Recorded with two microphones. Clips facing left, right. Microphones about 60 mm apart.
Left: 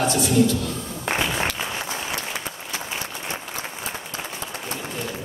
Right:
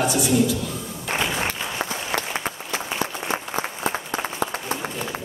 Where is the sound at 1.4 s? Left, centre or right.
Right.